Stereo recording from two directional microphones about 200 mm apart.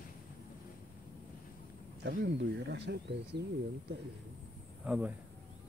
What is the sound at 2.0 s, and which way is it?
Speech, 55° right (ahead or behind).